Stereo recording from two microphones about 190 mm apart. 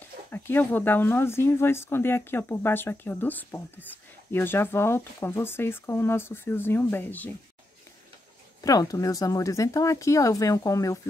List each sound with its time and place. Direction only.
0.3 s speech: 10° left (ahead or behind)
8.5 s speech: 20° left (ahead or behind)